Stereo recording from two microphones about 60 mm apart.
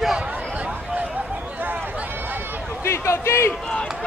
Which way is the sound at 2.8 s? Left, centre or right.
Left.